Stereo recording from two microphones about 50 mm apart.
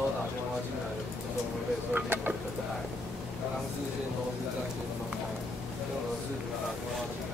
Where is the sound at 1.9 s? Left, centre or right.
Right.